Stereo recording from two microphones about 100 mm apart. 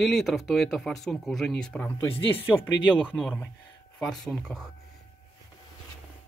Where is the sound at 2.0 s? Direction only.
20° left (ahead or behind); by 4.7 s 5° left (ahead or behind).